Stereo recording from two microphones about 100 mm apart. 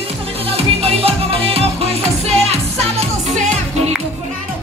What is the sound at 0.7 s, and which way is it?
Music, 90° right.